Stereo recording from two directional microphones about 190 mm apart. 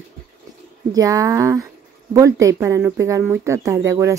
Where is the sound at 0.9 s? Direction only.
20° right (ahead or behind).